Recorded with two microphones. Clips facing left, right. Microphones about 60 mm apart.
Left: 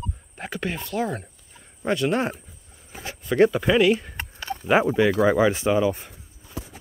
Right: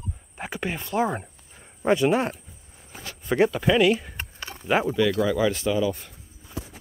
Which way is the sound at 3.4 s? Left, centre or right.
Centre.